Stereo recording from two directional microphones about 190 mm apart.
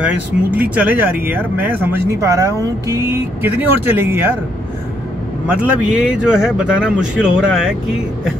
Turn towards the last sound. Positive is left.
turn(degrees=-5)  # may be behind; listen again after turning